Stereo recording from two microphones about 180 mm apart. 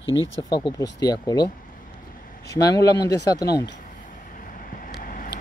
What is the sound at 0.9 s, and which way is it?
Speech, 20° left (ahead or behind).